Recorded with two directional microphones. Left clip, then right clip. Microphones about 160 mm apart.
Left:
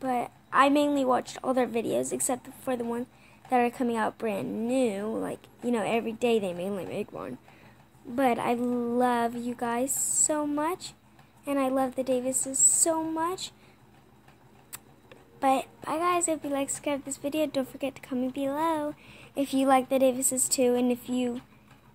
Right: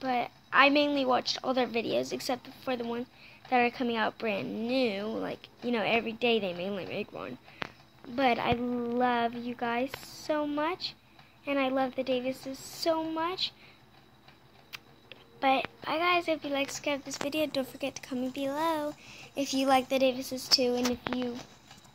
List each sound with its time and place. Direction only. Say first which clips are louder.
0.0 s a sound: left 1 dB; 15° left (ahead or behind)
1.3 s speech: left 2 dB; 15° left (ahead or behind)
15.3 s speech: left 2 dB; 15° left (ahead or behind)